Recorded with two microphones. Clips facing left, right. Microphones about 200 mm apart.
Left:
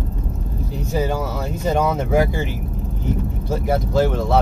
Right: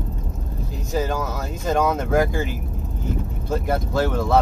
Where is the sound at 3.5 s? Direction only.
Centre (ahead or behind).